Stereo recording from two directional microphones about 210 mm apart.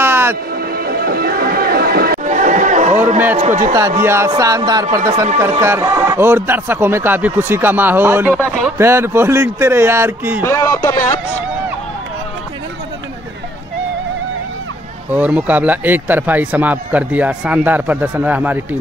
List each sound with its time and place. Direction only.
0.0 s music: 10° right (ahead or behind)
0.6 s music: 45° right (ahead or behind)
3.3 s a sound: 35° right (ahead or behind)
4.0 s a man's voice: 10° right (ahead or behind)
8.7 s speech: 10° right (ahead or behind)
10.4 s speech: 15° left (ahead or behind)
11.0 s speech: 35° left (ahead or behind)
15.0 s speech: 10° right (ahead or behind)